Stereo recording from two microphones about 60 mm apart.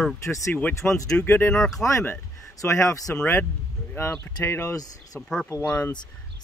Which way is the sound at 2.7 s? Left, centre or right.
Left.